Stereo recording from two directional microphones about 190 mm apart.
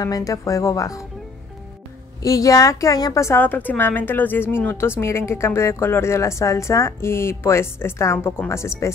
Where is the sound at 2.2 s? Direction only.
15° left (ahead or behind).